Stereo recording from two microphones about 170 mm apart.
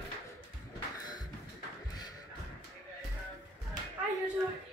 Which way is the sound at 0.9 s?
25° left (ahead or behind).